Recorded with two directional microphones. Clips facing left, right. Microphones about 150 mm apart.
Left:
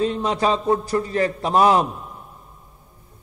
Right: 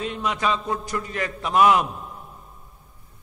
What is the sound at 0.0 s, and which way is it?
A man's voice, 35° left (ahead or behind).